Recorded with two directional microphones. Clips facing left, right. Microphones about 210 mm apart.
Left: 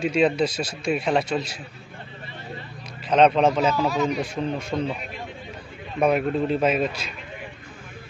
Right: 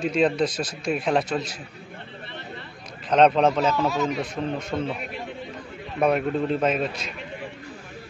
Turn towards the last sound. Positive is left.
turn(degrees=0)  # may be behind; listen again after turning